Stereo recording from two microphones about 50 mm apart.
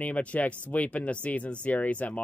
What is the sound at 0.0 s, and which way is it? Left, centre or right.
Speech, left.